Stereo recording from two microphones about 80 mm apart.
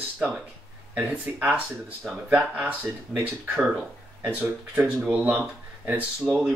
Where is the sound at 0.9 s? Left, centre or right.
Centre.